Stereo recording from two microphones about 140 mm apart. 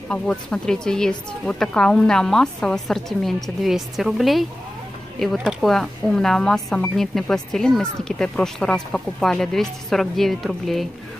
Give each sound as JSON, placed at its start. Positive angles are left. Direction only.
{"t": 0.1, "sound": "speech", "side_deg": 5}